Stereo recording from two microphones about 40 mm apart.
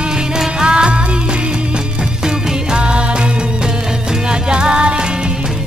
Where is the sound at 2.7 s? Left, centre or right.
Right.